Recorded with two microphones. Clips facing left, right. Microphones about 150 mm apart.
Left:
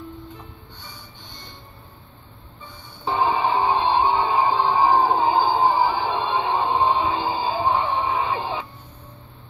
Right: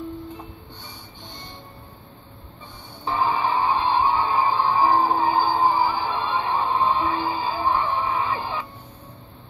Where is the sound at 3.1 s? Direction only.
25° left (ahead or behind).